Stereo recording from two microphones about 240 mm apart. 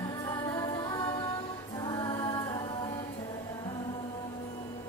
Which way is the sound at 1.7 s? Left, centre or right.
Centre.